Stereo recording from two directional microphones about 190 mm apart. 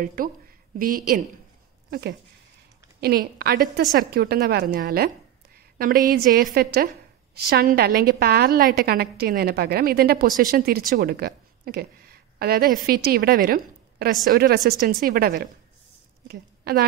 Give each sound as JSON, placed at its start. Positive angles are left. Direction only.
{"t": 0.0, "sound": "a woman's voice", "side_deg": -50}